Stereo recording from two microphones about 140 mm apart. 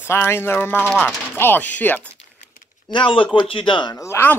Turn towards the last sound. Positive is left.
turn(degrees=15)  # may be behind; listen again after turning